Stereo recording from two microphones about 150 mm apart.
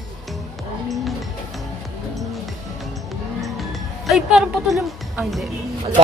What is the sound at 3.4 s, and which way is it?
Music, centre (ahead or behind).